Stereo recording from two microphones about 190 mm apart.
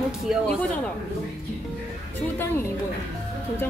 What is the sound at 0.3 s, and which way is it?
Speech, 5° left (ahead or behind).